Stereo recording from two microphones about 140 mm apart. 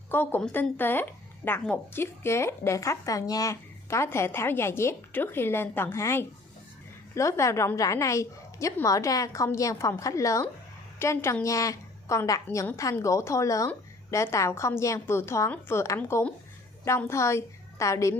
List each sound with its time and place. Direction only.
0.1 s a woman's voice: 15° left (ahead or behind)